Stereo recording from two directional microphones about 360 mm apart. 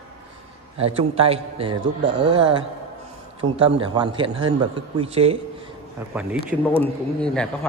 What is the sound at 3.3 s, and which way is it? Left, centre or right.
A man's voice, centre.